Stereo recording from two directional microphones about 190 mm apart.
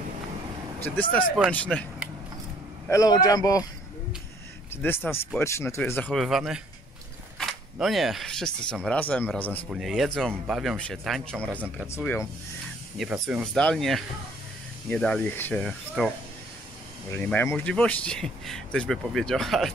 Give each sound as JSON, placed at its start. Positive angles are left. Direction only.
{"t": 0.8, "sound": "speech", "side_deg": 10}
{"t": 2.9, "sound": "speech", "side_deg": 20}
{"t": 4.8, "sound": "speech", "side_deg": 10}
{"t": 12.9, "sound": "speech", "side_deg": 0}
{"t": 17.1, "sound": "speech", "side_deg": 10}